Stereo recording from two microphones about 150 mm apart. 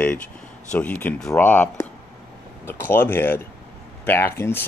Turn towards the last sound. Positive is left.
turn(degrees=15)  # may be behind; listen again after turning